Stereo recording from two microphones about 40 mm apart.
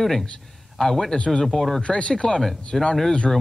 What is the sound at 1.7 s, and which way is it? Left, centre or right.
Speech, left.